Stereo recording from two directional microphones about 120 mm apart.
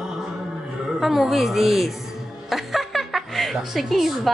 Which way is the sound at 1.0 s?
Centre (ahead or behind).